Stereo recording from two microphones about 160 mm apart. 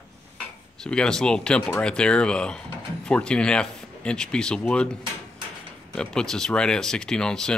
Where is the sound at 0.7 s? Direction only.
5° left (ahead or behind).